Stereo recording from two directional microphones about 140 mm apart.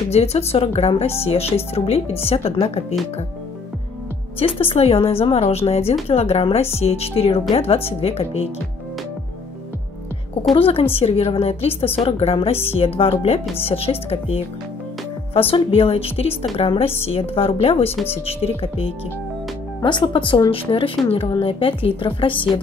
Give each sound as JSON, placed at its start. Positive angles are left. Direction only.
{"t": 0.1, "sound": "speech", "side_deg": 50}
{"t": 4.4, "sound": "speech", "side_deg": 40}
{"t": 10.5, "sound": "speech", "side_deg": 40}